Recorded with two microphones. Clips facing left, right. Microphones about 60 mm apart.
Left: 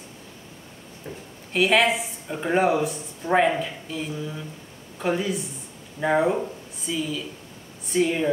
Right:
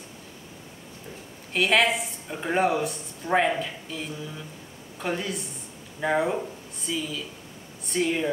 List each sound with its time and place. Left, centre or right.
1.0 s speech: left
1.5 s speech: centre